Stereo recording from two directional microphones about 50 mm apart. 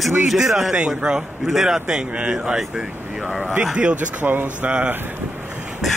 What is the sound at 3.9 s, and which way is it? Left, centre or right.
Speech, right.